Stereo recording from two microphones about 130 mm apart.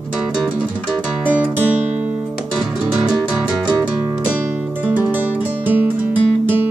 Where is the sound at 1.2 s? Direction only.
15° right (ahead or behind).